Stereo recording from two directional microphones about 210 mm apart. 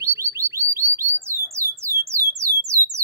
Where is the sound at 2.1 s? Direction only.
15° right (ahead or behind).